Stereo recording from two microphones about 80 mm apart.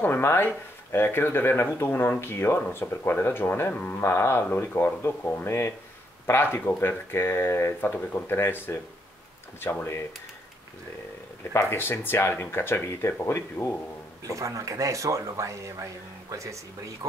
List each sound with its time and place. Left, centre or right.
0.0 s speech: left
11.5 s speech: left
14.2 s speech: right